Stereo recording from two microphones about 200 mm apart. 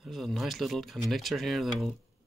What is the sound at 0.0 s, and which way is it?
Speech, centre (ahead or behind).